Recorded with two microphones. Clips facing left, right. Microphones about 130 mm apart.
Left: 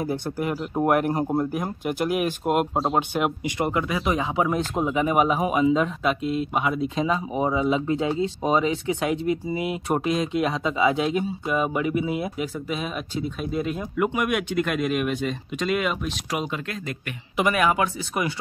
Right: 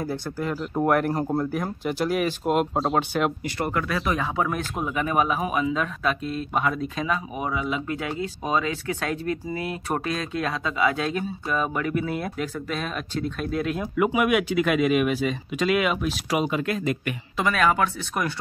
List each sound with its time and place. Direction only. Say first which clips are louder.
0.0 s speech: left 2 dB; 20° left (ahead or behind)
1.5 s speech: even; 5° left (ahead or behind)
7.1 s speech: left 3 dB; 25° left (ahead or behind); by 17.1 s 5° right (ahead or behind)
17.4 s speech: left 1 dB; 15° left (ahead or behind)